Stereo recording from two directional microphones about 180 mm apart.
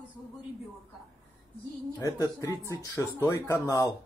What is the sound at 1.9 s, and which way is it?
Speech, 20° left (ahead or behind).